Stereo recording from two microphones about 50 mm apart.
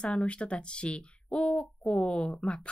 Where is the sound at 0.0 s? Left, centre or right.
Left.